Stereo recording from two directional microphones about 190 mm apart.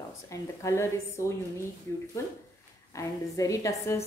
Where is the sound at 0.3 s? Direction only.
15° left (ahead or behind).